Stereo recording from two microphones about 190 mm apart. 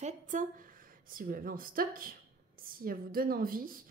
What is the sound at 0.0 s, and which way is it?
A woman's voice, 45° right (ahead or behind).